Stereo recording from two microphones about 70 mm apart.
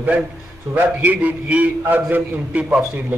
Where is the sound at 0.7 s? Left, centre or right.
Right.